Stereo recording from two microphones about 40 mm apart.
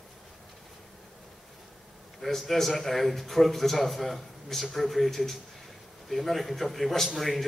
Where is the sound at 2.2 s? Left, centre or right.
Centre.